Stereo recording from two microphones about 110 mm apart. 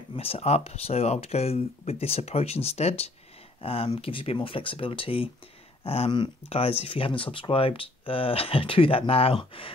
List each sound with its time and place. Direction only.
0.1 s speech: 60° left (ahead or behind)
3.6 s speech: 60° left (ahead or behind)